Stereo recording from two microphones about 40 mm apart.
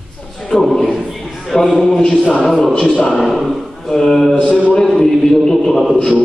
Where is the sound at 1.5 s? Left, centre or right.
Centre.